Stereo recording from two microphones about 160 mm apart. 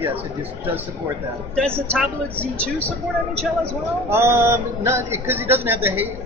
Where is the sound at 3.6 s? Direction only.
15° right (ahead or behind).